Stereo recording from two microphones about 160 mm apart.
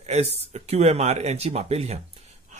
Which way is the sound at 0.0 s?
40° right (ahead or behind).